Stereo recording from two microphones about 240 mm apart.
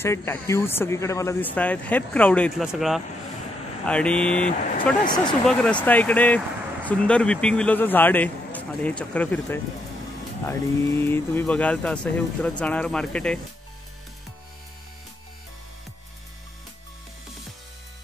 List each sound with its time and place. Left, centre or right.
0.0 s speech: centre
5.0 s speech: centre
5.4 s speech: centre